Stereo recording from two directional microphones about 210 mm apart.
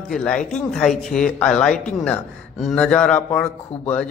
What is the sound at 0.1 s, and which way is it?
A man's voice, 5° left (ahead or behind).